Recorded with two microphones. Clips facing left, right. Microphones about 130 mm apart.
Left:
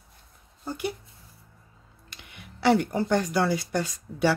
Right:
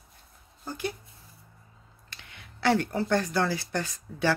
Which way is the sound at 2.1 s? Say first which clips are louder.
Left 3 dB; 10° left (ahead or behind).